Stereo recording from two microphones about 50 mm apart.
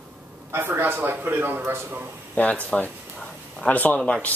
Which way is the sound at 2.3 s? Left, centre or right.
Left.